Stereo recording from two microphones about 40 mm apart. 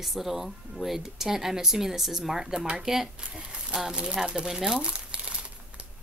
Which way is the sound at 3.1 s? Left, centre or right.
Right.